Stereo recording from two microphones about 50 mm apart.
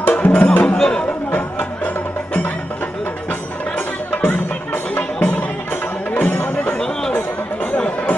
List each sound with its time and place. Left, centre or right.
0.1 s music: left
0.7 s speech: centre
3.3 s music: left
4.9 s music: left
6.8 s chatter: centre
7.2 s chatter: left